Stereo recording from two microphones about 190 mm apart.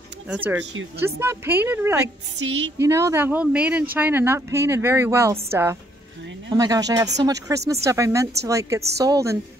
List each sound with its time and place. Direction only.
0.3 s a woman's voice: 10° right (ahead or behind)
2.4 s speech: 90° right
2.8 s a woman's voice: 15° right (ahead or behind)